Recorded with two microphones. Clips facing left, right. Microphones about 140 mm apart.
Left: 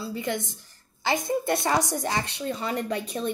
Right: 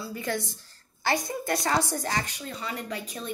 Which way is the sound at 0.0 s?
20° left (ahead or behind).